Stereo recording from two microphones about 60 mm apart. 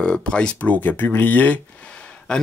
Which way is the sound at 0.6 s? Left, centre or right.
Left.